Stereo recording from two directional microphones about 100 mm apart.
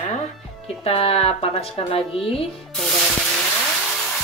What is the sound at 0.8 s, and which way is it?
A woman's voice, 75° left (ahead or behind).